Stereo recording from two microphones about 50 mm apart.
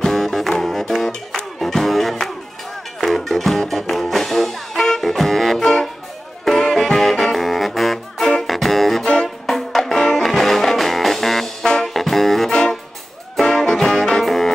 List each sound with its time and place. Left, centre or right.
0.0 s music: centre
6.4 s brass instrument: centre
9.0 s music: centre
9.5 s music: centre